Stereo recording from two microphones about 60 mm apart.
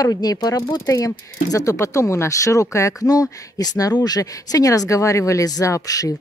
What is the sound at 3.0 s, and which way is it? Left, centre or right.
Speech, left.